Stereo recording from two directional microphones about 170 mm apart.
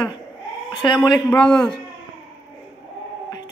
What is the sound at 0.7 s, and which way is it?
Speech, 25° left (ahead or behind).